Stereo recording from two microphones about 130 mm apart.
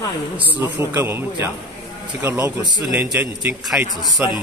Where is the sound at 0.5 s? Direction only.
15° right (ahead or behind).